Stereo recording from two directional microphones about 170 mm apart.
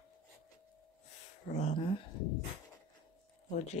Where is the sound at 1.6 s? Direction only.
35° left (ahead or behind).